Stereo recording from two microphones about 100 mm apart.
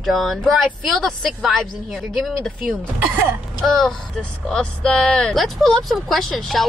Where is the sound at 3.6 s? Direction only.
5° left (ahead or behind).